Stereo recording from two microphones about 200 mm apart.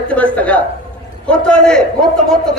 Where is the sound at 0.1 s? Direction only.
5° left (ahead or behind).